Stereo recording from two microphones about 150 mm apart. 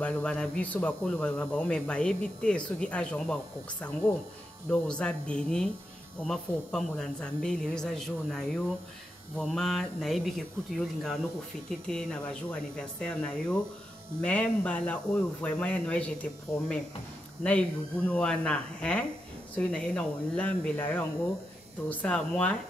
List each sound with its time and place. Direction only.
0.0 s speech: 10° left (ahead or behind)
11.9 s speech: 5° left (ahead or behind)